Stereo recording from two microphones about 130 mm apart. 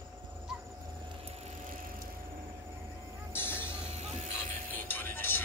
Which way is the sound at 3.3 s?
15° left (ahead or behind).